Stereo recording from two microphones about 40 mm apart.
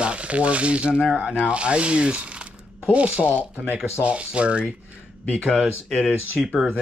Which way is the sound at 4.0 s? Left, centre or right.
Right.